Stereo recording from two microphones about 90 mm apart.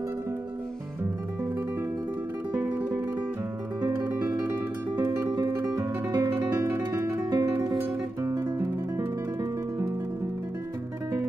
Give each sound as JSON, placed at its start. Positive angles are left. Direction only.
{"t": 2.5, "sound": "music", "side_deg": -20}
{"t": 5.3, "sound": "guitar", "side_deg": -35}
{"t": 7.2, "sound": "music", "side_deg": -40}
{"t": 8.2, "sound": "guitar", "side_deg": -35}